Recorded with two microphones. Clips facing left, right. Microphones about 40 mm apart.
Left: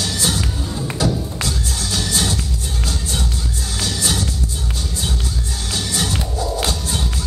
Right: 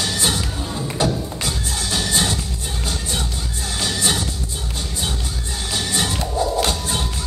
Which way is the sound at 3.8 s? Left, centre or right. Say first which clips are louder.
Right 1 dB; right.